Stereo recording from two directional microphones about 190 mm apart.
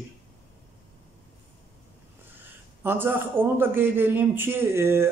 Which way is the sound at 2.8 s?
10° right (ahead or behind).